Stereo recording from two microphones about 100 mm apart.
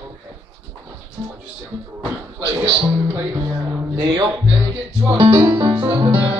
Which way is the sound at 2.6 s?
55° right (ahead or behind).